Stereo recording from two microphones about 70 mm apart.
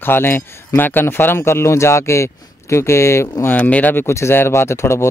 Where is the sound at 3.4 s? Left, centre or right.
Left.